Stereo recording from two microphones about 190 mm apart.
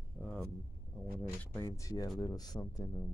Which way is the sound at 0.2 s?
5° left (ahead or behind).